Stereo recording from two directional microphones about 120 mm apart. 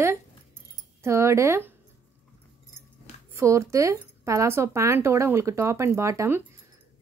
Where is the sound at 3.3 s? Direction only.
25° right (ahead or behind).